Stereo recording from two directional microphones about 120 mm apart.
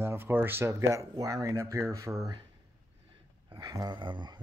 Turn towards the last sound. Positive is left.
turn(degrees=-40)  # may be behind; listen again after turning